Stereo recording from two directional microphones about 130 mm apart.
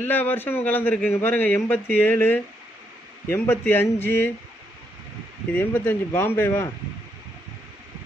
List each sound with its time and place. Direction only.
0.0 s a man's voice: 15° left (ahead or behind)
5.5 s a man's voice: 15° left (ahead or behind)